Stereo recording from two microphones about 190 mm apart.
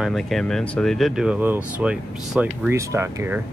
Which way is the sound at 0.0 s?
Centre (ahead or behind).